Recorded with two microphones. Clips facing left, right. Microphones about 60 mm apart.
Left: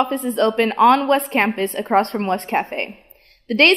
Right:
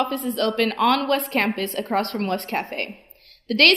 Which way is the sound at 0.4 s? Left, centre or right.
Left.